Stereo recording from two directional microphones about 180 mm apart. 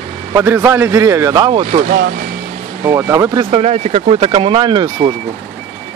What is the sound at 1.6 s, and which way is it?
Speech, 50° right (ahead or behind).